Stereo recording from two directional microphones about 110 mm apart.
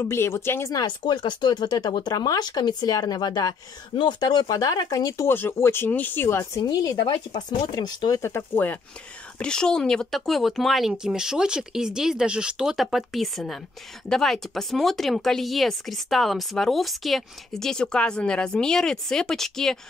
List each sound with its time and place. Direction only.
0.0 s speech: 25° left (ahead or behind)
0.7 s speech: 40° left (ahead or behind); by 6.6 s 20° left (ahead or behind)
6.6 s speech: 35° left (ahead or behind)
8.2 s speech: 20° left (ahead or behind)
9.4 s speech: 5° left (ahead or behind)